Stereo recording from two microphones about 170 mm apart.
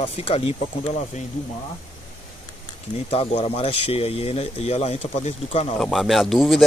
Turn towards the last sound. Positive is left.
turn(degrees=0)  # may be behind; listen again after turning